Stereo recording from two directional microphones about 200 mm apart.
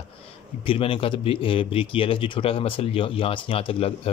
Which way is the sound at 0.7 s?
25° left (ahead or behind).